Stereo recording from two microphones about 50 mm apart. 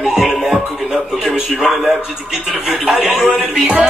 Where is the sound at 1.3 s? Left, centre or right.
Centre.